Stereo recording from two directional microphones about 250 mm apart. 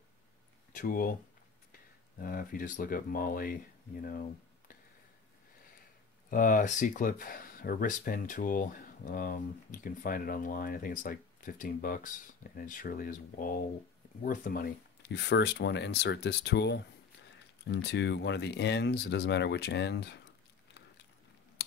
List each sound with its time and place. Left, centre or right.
0.7 s speech: left
6.3 s speech: left
21.6 s scissors: left